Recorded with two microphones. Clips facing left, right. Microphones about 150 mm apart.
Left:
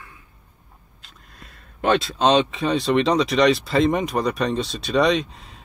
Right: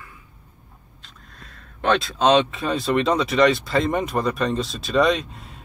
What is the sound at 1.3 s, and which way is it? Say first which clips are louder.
Speech: even; 5° left (ahead or behind).